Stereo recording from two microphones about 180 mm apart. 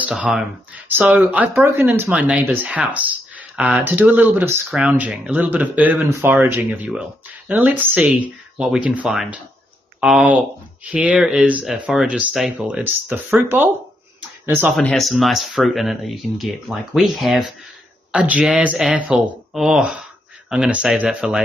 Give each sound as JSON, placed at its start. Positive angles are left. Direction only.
{"t": 0.0, "sound": "speech", "side_deg": -5}
{"t": 14.8, "sound": "speech", "side_deg": 5}